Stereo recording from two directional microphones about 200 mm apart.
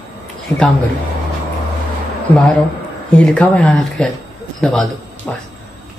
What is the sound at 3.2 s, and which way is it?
A man's voice, 5° left (ahead or behind).